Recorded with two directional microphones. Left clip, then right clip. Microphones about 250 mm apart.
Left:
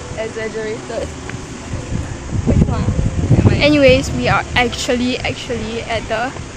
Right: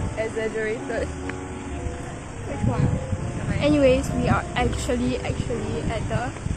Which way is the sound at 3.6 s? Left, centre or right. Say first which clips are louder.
Left 7 dB; centre.